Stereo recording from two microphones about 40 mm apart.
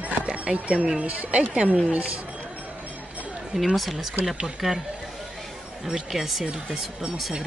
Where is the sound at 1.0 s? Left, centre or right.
Right.